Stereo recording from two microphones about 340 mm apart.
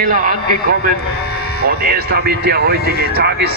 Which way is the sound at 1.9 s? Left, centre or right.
Right.